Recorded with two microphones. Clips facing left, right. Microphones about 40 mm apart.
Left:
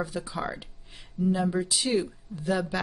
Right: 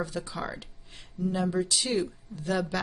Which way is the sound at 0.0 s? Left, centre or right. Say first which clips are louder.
Left 2 dB; centre.